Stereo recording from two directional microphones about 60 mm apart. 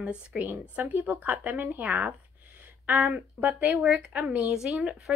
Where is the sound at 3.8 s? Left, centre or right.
Centre.